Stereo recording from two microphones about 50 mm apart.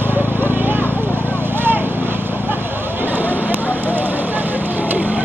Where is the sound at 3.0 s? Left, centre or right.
Right.